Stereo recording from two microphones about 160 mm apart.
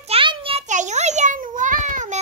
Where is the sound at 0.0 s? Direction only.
35° right (ahead or behind).